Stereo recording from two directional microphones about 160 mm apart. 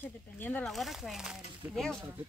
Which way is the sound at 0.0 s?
10° left (ahead or behind).